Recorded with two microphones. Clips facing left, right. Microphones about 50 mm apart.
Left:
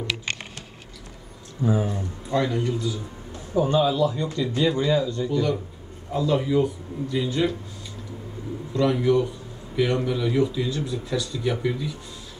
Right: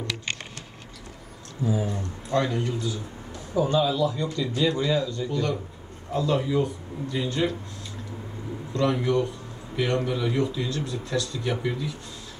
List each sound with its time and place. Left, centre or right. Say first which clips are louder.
1.6 s speech: left 3 dB; left
1.9 s speech: left 1 dB; centre
3.5 s a man's voice: left 2 dB; left; by 7.5 s centre
8.7 s speech: left 3 dB; centre